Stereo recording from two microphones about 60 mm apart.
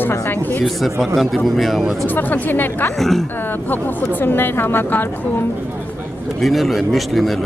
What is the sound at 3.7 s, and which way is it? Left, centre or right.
Speech, left.